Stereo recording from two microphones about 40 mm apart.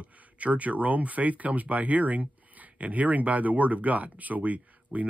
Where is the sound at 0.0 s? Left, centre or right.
Right.